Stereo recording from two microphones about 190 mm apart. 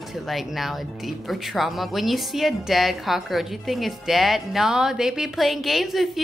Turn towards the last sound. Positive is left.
turn(degrees=0)  # may be behind; listen again after turning